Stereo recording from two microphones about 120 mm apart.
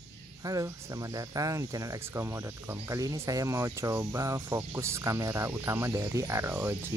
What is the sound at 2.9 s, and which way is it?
Speech, 30° right (ahead or behind).